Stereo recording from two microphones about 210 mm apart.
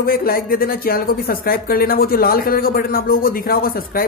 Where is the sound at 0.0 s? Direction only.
45° left (ahead or behind).